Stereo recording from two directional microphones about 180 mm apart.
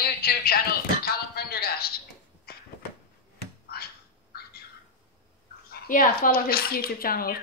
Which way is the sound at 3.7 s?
60° left (ahead or behind).